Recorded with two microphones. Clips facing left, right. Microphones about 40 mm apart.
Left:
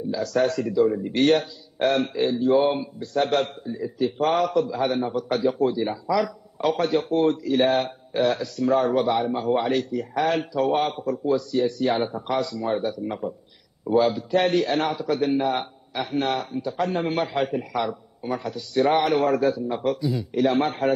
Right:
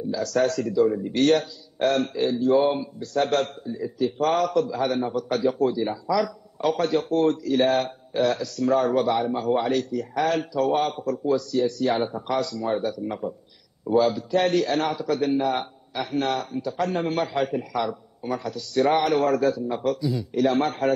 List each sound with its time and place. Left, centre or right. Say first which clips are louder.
0.1 s a man's voice: even; centre